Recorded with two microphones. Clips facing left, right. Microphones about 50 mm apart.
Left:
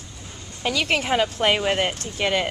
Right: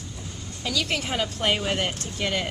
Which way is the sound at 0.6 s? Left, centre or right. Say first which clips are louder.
Left 5 dB; left.